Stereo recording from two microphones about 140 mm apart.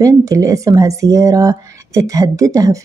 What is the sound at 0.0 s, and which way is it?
Speech, 25° right (ahead or behind).